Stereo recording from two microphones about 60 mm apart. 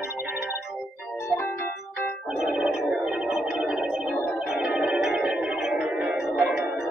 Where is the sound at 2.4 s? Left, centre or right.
Centre.